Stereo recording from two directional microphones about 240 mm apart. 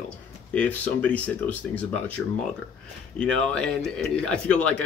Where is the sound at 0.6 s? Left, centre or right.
Centre.